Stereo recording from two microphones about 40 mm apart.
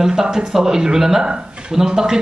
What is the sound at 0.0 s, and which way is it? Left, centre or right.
A man's voice, centre.